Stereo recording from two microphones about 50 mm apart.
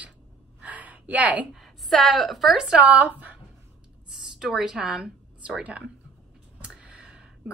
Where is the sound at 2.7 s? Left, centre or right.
Right.